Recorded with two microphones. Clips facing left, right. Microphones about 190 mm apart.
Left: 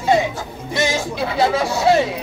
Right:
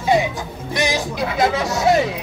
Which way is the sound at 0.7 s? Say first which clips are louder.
Left 1 dB; 15° right (ahead or behind).